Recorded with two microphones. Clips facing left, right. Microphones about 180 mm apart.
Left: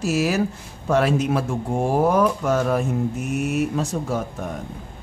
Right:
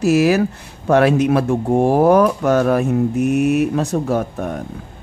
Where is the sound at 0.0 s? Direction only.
65° right (ahead or behind).